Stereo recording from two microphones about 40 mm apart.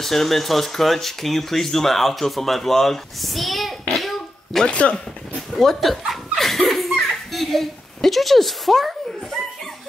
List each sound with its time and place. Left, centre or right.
0.0 s speech: centre
3.9 s a sound: centre
4.6 s speech: left
5.6 s laughter: centre